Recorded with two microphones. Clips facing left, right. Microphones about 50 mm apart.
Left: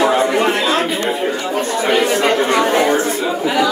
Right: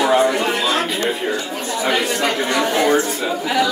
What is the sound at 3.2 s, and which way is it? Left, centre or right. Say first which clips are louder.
Speech: left 3 dB; centre.